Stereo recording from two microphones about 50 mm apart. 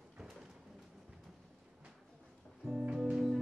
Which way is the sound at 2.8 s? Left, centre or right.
Centre.